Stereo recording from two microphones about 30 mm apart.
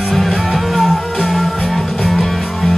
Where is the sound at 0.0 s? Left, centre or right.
Centre.